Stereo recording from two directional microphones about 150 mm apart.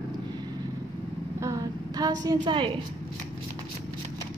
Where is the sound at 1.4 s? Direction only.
25° right (ahead or behind).